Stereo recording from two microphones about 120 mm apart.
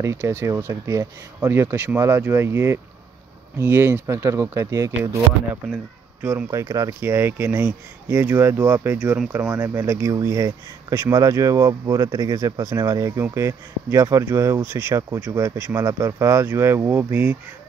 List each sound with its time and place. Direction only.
0.0 s speech: 20° right (ahead or behind)
9.4 s speech: 20° right (ahead or behind)